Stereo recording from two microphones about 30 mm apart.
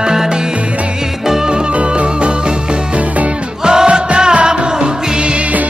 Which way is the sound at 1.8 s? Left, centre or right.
Right.